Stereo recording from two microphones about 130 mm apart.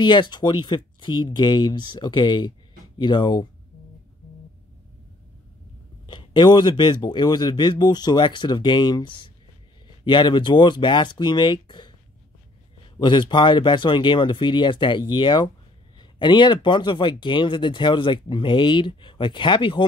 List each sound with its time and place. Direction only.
0.0 s speech: 35° left (ahead or behind)
6.0 s speech: 35° left (ahead or behind)
13.0 s speech: 35° left (ahead or behind)